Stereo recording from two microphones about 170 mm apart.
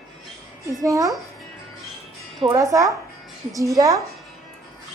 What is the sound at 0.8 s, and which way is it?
Speech, 20° right (ahead or behind).